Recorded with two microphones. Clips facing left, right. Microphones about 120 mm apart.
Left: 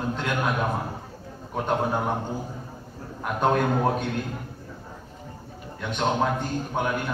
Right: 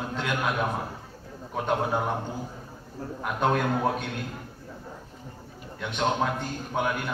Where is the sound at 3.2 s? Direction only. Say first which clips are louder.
Left 3 dB; centre (ahead or behind).